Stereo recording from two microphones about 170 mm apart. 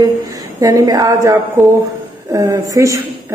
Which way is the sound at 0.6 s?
20° right (ahead or behind).